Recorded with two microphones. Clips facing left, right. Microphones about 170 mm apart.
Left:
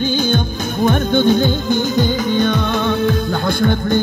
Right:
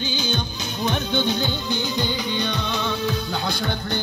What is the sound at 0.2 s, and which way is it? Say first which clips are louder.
Music: left 9 dB; 50° left (ahead or behind).